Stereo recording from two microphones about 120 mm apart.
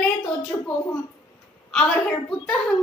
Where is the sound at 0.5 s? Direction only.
25° left (ahead or behind).